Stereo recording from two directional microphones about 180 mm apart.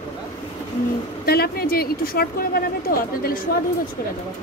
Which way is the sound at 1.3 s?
60° left (ahead or behind).